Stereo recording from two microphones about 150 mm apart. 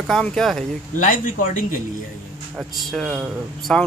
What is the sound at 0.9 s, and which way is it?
Speech, 60° left (ahead or behind).